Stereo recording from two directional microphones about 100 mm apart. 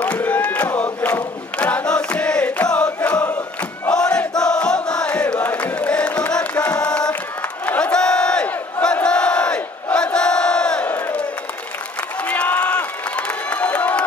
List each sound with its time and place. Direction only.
0.0 s battle cry: 15° left (ahead or behind)
3.9 s crowd: 10° left (ahead or behind)
4.4 s music: 10° left (ahead or behind)
7.6 s crowd: 15° left (ahead or behind)
10.9 s crowd: 20° left (ahead or behind)
12.3 s crowd: 15° left (ahead or behind)